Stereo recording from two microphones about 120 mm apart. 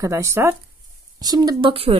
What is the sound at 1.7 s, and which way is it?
Speech, 50° right (ahead or behind).